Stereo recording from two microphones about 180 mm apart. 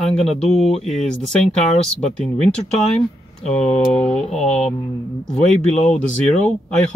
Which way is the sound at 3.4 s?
40° left (ahead or behind).